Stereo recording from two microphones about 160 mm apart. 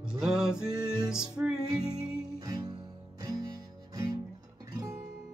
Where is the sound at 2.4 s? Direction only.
25° right (ahead or behind).